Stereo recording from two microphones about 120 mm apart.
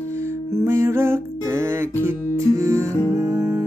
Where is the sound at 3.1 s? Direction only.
25° right (ahead or behind).